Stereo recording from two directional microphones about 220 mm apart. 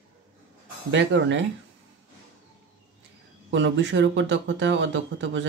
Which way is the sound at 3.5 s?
55° right (ahead or behind).